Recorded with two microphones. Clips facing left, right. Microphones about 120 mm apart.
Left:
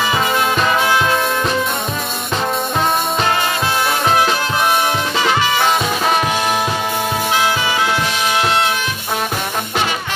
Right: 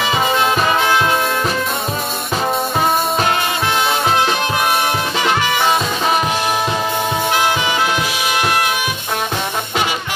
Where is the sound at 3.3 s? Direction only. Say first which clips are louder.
Even; 20° right (ahead or behind).